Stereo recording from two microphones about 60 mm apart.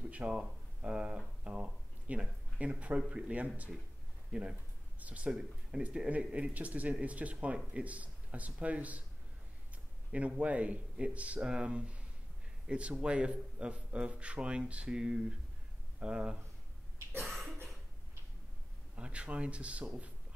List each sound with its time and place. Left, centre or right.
0.1 s speech: centre
10.1 s a man's voice: right
17.2 s cough: centre
18.9 s speech: centre